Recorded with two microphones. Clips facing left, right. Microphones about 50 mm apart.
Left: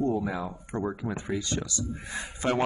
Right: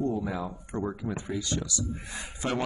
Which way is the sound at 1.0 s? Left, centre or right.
Left.